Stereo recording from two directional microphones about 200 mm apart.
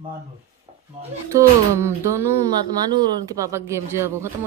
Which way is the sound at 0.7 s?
25° right (ahead or behind).